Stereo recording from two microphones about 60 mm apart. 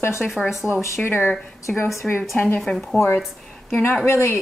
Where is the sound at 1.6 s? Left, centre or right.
Left.